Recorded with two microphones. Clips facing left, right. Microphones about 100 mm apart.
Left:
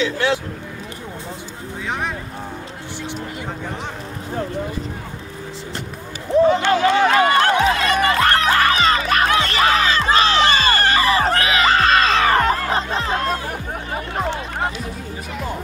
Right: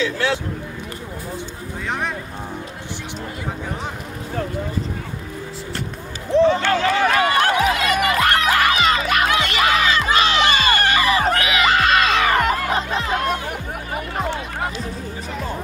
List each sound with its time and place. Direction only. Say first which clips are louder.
0.0 s speech: left 1 dB; 20° left (ahead or behind)
1.9 s speech: even; centre (ahead or behind)
6.6 s music: left 2 dB; 20° left (ahead or behind); by 13.4 s 35° left (ahead or behind)